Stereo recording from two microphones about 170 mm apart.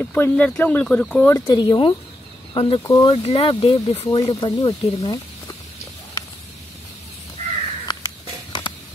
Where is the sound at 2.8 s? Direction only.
20° left (ahead or behind).